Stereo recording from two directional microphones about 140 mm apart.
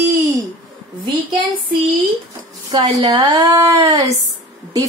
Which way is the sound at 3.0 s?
25° right (ahead or behind).